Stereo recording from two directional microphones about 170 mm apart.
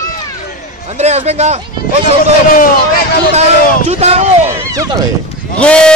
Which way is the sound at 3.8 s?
40° right (ahead or behind).